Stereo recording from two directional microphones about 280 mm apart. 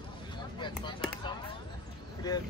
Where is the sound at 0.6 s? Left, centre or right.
Centre.